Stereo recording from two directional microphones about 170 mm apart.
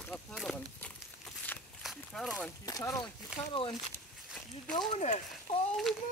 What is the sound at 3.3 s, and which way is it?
Speech, 5° right (ahead or behind).